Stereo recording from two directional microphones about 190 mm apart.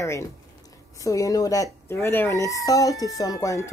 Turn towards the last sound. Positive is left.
turn(degrees=15)  # may be behind; listen again after turning